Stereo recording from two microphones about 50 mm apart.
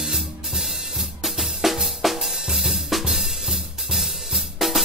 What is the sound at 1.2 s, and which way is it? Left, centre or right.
Drum kit, centre.